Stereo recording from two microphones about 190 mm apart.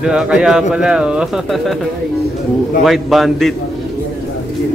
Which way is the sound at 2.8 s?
Centre (ahead or behind).